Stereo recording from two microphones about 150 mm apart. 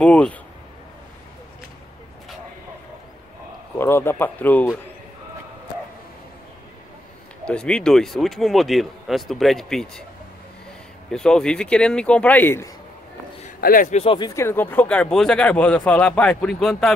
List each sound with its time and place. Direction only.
0.0 s speech: 10° left (ahead or behind)
3.7 s speech: 15° left (ahead or behind)
7.4 s speech: 5° left (ahead or behind)
11.1 s speech: 5° left (ahead or behind)
13.6 s a man's voice: 75° left (ahead or behind)
13.8 s speech: 45° left (ahead or behind)
14.1 s speech: 25° left (ahead or behind); by 16.9 s 5° left (ahead or behind)